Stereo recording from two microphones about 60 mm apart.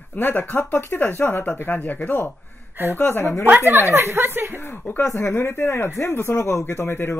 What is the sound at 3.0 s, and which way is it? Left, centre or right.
Speech, left.